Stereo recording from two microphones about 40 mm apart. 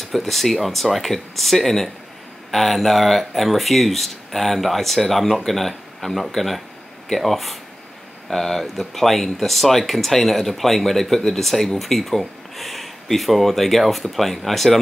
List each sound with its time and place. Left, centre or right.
0.0 s speech: centre